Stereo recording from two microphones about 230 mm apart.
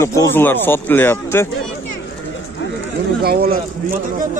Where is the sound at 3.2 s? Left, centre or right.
Right.